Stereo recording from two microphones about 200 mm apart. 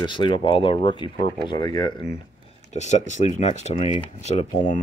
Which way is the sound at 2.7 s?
35° left (ahead or behind).